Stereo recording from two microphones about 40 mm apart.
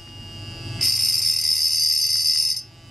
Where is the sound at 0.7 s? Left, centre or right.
Centre.